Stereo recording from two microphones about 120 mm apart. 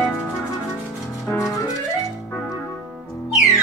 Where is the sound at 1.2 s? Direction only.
25° left (ahead or behind).